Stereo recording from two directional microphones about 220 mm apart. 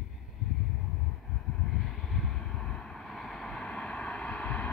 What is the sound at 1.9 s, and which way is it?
Vehicle, centre (ahead or behind).